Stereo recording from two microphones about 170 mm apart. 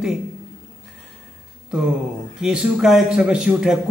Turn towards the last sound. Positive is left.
turn(degrees=-5)  # may be behind; listen again after turning